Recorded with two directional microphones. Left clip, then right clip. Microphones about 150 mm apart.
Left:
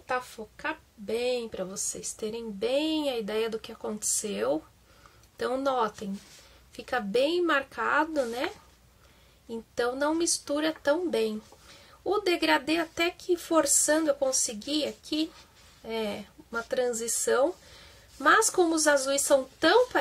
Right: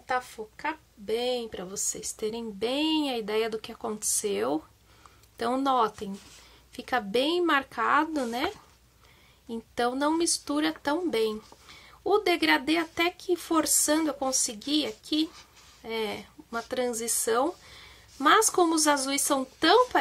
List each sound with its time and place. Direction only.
0.0 s a woman's voice: 25° right (ahead or behind); by 8.5 s 45° right (ahead or behind)
9.5 s speech: 40° right (ahead or behind)